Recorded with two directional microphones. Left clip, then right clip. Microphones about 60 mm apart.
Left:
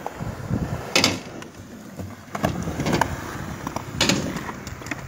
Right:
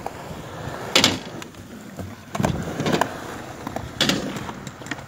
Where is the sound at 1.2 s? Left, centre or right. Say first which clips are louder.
Right 2 dB; centre.